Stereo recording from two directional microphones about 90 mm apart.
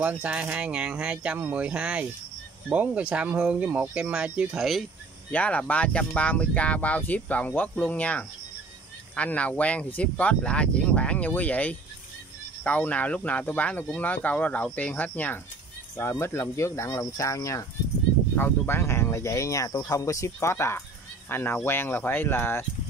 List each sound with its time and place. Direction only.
0.0 s speech: 15° right (ahead or behind)
5.3 s speech: 15° left (ahead or behind)
16.0 s speech: 30° left (ahead or behind)
18.3 s speech: 25° left (ahead or behind)